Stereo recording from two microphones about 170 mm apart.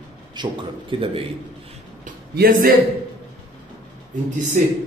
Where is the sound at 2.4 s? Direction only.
60° right (ahead or behind).